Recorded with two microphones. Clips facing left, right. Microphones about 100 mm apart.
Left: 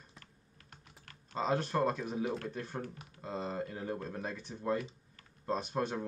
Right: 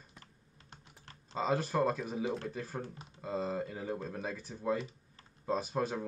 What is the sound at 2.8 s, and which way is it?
Speech, 25° right (ahead or behind).